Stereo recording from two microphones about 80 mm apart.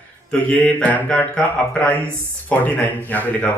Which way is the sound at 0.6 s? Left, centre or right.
Centre.